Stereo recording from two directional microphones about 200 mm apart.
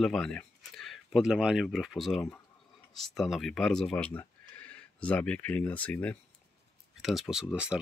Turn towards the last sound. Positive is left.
turn(degrees=-5)  # may be behind; listen again after turning